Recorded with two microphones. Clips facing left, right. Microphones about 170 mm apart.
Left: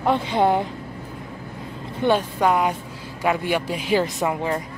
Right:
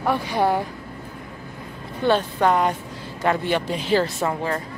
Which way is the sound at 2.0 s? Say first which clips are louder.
Even; 10° left (ahead or behind).